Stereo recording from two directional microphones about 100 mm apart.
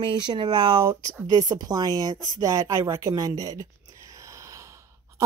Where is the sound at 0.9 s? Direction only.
35° right (ahead or behind).